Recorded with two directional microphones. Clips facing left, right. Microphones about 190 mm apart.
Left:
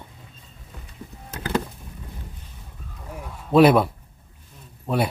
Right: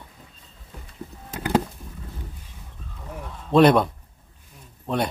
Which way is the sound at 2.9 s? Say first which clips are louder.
Even; 10° left (ahead or behind).